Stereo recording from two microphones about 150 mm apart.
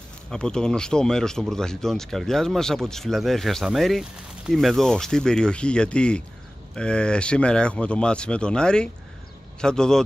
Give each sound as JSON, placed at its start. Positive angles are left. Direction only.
{"t": 0.3, "sound": "speech", "side_deg": 5}